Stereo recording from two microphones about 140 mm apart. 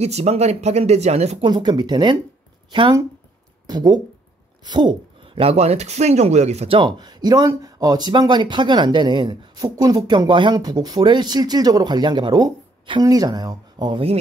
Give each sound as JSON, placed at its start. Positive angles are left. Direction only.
{"t": 0.0, "sound": "speech", "side_deg": -50}
{"t": 1.4, "sound": "speech", "side_deg": -30}
{"t": 7.0, "sound": "speech", "side_deg": -30}